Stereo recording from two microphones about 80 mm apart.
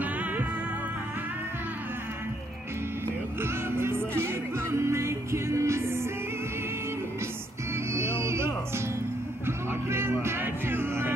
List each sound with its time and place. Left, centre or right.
0.0 s music: right
3.3 s music: right
7.7 s music: right
9.7 s music: right